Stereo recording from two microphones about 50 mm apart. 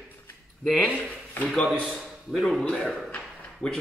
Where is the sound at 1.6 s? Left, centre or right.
Centre.